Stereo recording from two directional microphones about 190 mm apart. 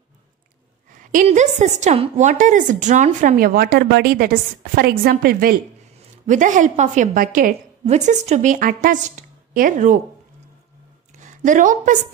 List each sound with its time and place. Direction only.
1.1 s a woman's voice: 40° right (ahead or behind)
7.8 s a woman's voice: 35° right (ahead or behind)
11.1 s a woman's voice: 40° right (ahead or behind)